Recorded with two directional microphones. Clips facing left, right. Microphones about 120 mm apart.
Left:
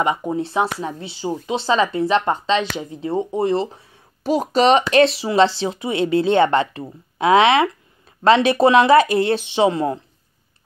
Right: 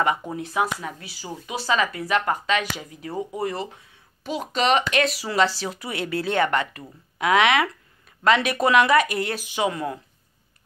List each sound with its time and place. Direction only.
0.0 s speech: 20° left (ahead or behind)